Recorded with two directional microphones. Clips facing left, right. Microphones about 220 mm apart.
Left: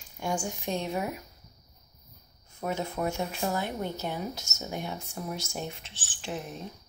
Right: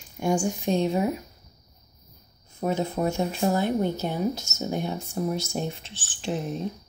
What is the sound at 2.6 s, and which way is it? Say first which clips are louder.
Speech: right 5 dB; 30° right (ahead or behind).